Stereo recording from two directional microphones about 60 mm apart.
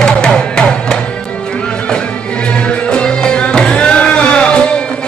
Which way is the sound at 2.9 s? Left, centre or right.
Centre.